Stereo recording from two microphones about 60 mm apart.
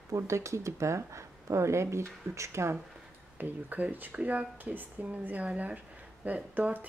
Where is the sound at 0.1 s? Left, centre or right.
Right.